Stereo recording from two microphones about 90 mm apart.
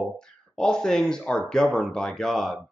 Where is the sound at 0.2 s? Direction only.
5° left (ahead or behind).